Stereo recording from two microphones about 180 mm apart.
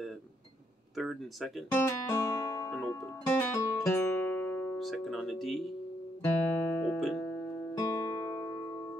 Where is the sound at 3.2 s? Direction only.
15° left (ahead or behind).